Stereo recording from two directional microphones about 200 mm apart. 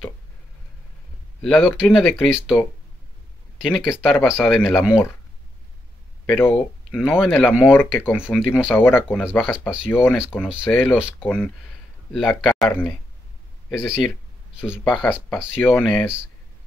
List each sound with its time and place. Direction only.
1.4 s speech: 5° left (ahead or behind)
3.6 s speech: centre (ahead or behind)
6.9 s speech: centre (ahead or behind)
8.2 s speech: 5° right (ahead or behind)
8.6 s speech: 10° left (ahead or behind)